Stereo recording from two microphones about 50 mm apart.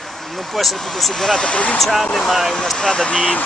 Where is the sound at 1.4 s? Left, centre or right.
Left.